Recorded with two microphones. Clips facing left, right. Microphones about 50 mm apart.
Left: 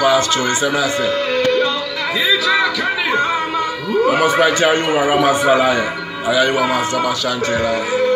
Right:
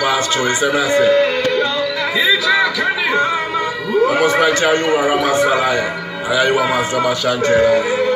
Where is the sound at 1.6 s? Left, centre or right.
Centre.